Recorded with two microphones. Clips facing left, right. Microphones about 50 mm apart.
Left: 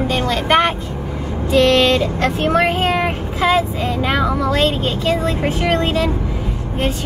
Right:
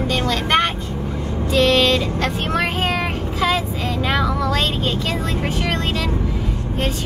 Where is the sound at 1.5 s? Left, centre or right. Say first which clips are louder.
Left 3 dB; centre; by 4.5 s left.